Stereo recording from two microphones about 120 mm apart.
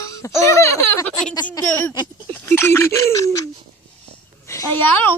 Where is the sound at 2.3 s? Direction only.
20° left (ahead or behind).